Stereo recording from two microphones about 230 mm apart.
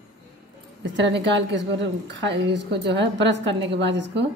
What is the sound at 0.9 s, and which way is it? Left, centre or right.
A woman's voice, right.